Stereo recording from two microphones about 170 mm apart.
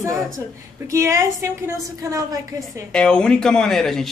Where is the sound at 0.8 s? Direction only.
15° right (ahead or behind).